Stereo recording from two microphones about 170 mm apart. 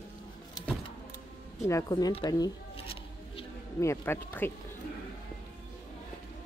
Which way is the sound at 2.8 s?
35° left (ahead or behind).